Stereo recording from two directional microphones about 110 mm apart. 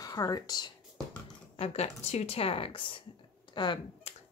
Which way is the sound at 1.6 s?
70° left (ahead or behind).